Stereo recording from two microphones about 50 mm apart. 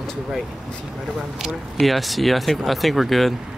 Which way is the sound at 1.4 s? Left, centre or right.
Centre.